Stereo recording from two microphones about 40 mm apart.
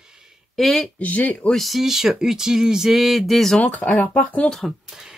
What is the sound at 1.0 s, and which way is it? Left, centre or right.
Speech, left.